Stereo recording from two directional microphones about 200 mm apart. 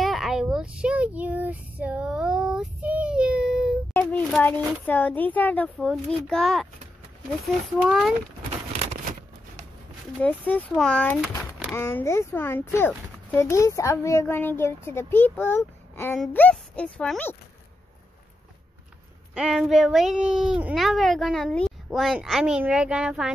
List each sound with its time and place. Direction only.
0.0 s a sound: centre (ahead or behind)
3.9 s a sound: 10° left (ahead or behind)
4.8 s speech: 5° left (ahead or behind)
7.8 s speech: centre (ahead or behind)
10.2 s speech: 10° left (ahead or behind)
19.3 s speech: 5° right (ahead or behind)